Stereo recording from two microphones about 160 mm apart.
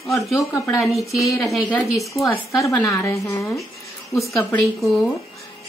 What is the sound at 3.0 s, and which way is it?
Speech, 20° left (ahead or behind).